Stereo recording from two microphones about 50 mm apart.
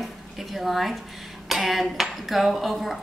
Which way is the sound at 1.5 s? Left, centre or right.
Centre.